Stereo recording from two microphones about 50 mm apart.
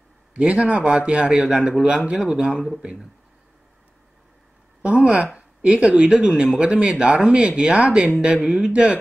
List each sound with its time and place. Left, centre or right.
0.3 s speech: right
4.8 s a sound: right
5.2 s speech: right